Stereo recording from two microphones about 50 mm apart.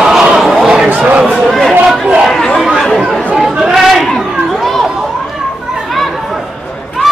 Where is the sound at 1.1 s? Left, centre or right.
Right.